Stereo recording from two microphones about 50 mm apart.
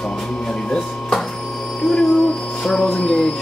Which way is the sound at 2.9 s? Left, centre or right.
Left.